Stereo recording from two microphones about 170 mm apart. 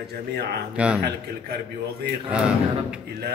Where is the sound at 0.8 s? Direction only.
10° right (ahead or behind).